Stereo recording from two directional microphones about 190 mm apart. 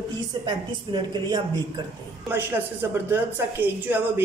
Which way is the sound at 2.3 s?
10° right (ahead or behind).